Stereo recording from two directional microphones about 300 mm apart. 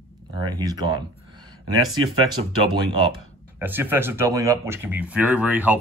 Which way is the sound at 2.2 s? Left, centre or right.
Centre.